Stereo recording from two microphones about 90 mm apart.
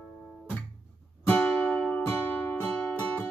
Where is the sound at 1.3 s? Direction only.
15° left (ahead or behind).